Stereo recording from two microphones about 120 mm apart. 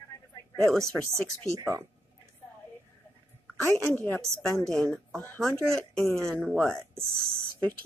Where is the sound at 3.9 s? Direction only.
15° left (ahead or behind).